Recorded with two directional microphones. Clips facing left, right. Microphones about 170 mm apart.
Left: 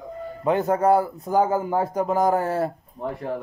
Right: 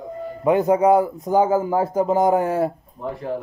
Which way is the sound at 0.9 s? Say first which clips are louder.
Right 3 dB; 15° right (ahead or behind).